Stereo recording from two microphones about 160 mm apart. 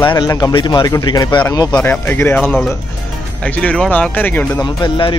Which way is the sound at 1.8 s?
10° left (ahead or behind).